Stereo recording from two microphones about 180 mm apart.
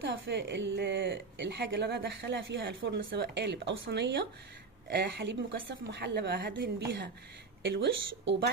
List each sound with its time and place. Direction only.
0.0 s a woman's voice: 75° right (ahead or behind)
7.6 s speech: 80° right